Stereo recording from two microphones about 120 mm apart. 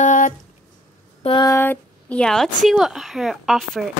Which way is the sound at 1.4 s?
20° left (ahead or behind).